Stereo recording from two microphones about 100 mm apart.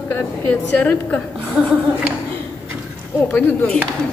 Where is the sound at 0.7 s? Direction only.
15° left (ahead or behind).